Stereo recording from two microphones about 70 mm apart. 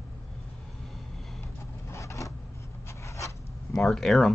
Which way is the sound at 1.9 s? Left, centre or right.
Left.